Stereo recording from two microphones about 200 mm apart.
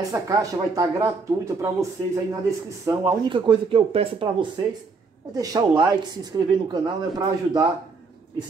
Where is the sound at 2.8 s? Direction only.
15° right (ahead or behind).